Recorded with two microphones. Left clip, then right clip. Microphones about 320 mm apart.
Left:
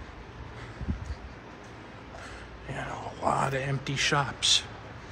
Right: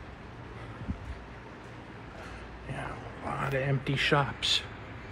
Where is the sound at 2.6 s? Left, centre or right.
Centre.